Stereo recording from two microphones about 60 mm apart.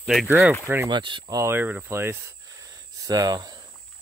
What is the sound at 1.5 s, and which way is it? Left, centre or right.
Speech, right.